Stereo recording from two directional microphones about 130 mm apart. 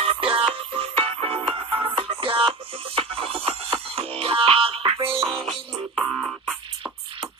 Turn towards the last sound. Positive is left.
turn(degrees=0)  # may be behind; listen again after turning